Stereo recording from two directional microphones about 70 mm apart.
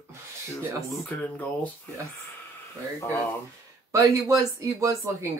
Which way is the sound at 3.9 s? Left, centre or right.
Right.